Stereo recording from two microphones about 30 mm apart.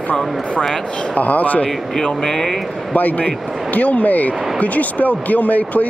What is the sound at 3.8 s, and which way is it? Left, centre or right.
Speech, left.